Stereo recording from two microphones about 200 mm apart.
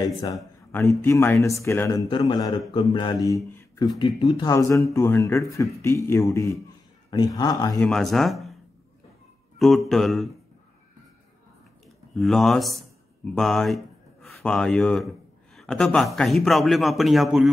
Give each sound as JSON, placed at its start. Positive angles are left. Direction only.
{"t": 0.0, "sound": "speech", "side_deg": 20}
{"t": 7.8, "sound": "speech", "side_deg": 0}
{"t": 9.6, "sound": "speech", "side_deg": 0}
{"t": 12.2, "sound": "a man's voice", "side_deg": 0}